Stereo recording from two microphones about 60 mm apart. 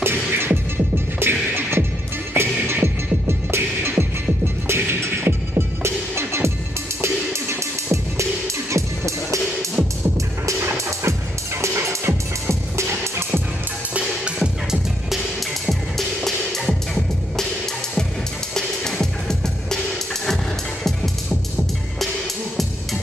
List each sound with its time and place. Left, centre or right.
0.0 s music: right
10.9 s music: right
13.9 s music: centre
16.3 s music: centre
18.5 s music: centre
20.8 s music: centre